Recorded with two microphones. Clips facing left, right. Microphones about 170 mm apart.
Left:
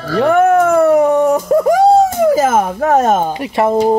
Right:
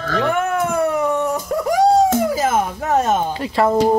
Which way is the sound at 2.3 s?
50° left (ahead or behind).